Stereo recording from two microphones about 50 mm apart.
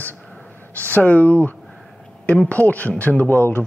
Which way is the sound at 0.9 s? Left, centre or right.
Left.